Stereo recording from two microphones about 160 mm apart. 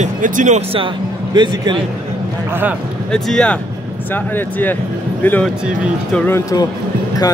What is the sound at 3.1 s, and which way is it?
Speech, 5° left (ahead or behind).